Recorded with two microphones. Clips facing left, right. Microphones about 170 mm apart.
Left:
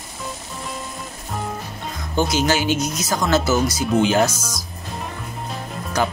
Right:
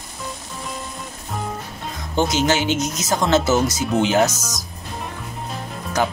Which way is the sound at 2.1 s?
25° right (ahead or behind).